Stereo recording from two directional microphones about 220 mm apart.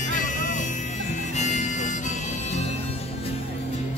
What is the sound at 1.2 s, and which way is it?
Harmonica, 35° left (ahead or behind).